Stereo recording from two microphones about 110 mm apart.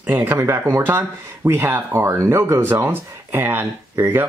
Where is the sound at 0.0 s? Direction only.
20° right (ahead or behind).